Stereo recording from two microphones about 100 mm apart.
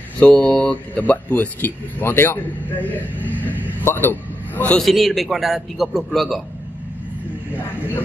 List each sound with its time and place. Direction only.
0.2 s a man's voice: 15° left (ahead or behind)
4.7 s a man's voice: centre (ahead or behind)